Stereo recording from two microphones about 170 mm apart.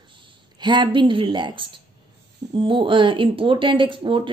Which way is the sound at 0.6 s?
25° right (ahead or behind).